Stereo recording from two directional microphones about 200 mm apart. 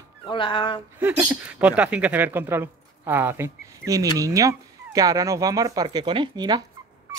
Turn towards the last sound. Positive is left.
turn(degrees=-20)  # may be behind; listen again after turning